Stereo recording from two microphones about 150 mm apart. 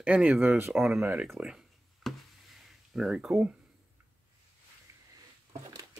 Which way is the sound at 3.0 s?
5° right (ahead or behind).